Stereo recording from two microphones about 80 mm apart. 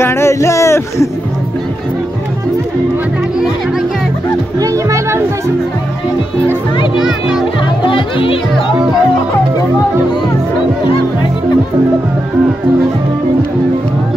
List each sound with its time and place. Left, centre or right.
0.0 s a sound: left
4.6 s music: right
7.0 s a child's voice: centre
7.8 s speech: left